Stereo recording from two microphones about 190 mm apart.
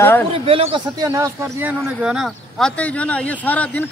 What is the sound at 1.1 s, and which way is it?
Speech, 15° right (ahead or behind).